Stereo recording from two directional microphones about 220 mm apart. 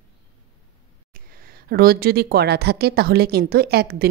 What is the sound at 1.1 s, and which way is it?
A woman's voice, 40° right (ahead or behind).